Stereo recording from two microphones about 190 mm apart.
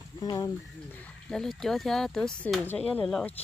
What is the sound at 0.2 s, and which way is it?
Speech, 20° left (ahead or behind).